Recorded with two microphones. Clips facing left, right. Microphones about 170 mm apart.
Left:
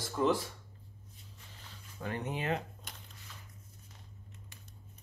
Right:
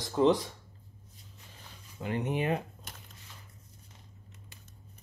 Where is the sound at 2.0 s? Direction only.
20° right (ahead or behind).